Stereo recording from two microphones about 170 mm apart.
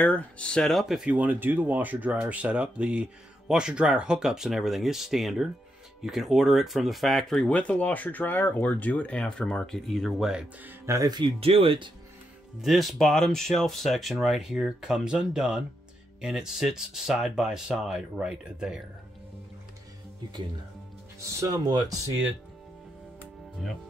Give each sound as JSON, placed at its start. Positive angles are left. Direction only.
{"t": 0.0, "sound": "speech", "side_deg": 10}
{"t": 12.6, "sound": "speech", "side_deg": 0}
{"t": 21.2, "sound": "speech", "side_deg": -20}